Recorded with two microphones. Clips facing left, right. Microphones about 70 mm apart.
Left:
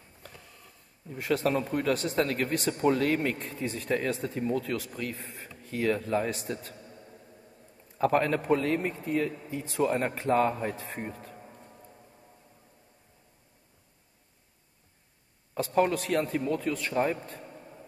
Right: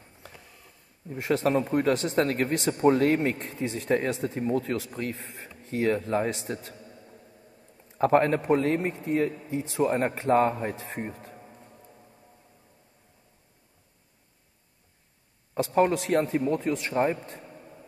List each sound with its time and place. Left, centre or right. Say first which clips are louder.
1.1 s a man's voice: right 3 dB; right
7.9 s a man's voice: right 4 dB; right
15.5 s a man's voice: right 3 dB; right